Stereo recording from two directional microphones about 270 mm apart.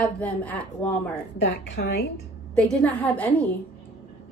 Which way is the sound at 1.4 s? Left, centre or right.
Left.